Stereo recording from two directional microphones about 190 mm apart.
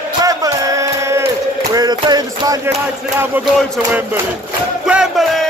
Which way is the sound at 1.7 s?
20° right (ahead or behind).